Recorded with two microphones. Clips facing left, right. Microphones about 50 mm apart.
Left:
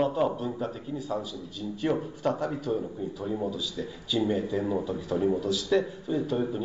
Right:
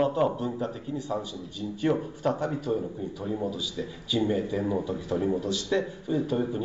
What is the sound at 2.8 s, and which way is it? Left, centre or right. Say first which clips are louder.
Speech: even; centre.